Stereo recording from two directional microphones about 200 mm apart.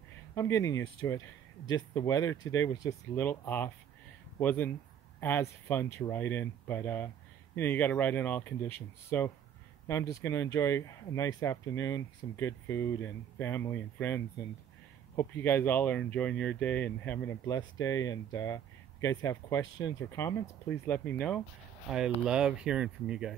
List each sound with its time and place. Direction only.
0.3 s speech: 15° left (ahead or behind); by 23.3 s 5° right (ahead or behind)